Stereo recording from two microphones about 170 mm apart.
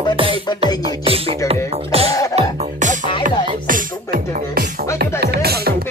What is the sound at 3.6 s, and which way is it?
Music, 60° right (ahead or behind).